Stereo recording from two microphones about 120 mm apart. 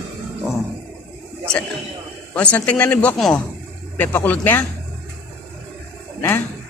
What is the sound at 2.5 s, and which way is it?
Speech, 10° left (ahead or behind).